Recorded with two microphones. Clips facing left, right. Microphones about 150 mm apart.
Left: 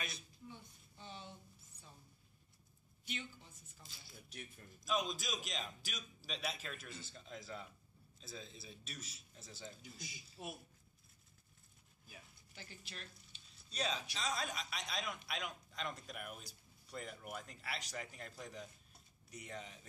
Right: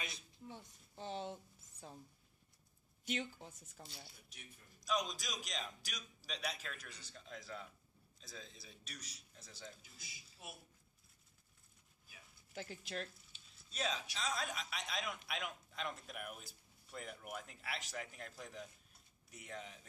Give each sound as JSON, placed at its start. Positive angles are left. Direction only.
{"t": 0.5, "sound": "a sound", "side_deg": -90}
{"t": 3.1, "sound": "speech", "side_deg": -90}
{"t": 3.7, "sound": "speech", "side_deg": -65}
{"t": 4.7, "sound": "a man's voice", "side_deg": 5}
{"t": 12.5, "sound": "speech", "side_deg": -90}
{"t": 13.7, "sound": "a man's voice", "side_deg": 0}